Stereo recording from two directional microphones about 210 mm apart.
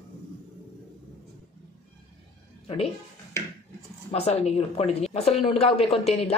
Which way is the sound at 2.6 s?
30° left (ahead or behind).